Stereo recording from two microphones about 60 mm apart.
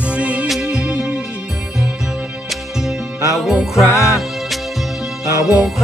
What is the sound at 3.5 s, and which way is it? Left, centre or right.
Music, centre.